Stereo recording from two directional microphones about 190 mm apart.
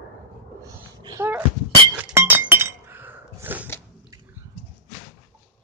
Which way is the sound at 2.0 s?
10° right (ahead or behind).